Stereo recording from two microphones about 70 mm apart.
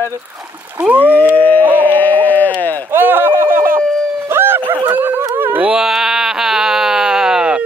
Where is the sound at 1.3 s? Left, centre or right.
Left.